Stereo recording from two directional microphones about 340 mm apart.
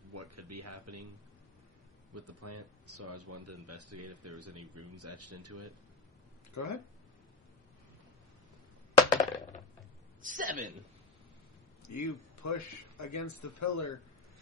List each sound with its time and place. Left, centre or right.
0.1 s speech: right
2.1 s a man's voice: right
6.5 s speech: left
8.9 s coin: centre
10.2 s a man's voice: right
11.8 s a man's voice: left